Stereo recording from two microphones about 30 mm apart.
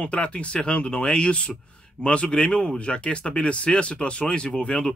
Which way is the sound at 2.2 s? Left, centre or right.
Left.